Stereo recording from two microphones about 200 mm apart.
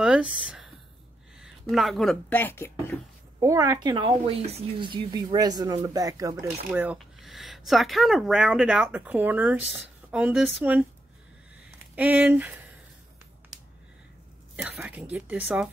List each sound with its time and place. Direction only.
0.0 s a sound: 5° right (ahead or behind)
1.4 s speech: centre (ahead or behind)
3.3 s speech: 15° right (ahead or behind)
6.3 s speech: 5° right (ahead or behind)
11.9 s a woman's voice: 10° right (ahead or behind)
14.6 s a woman's voice: 5° right (ahead or behind)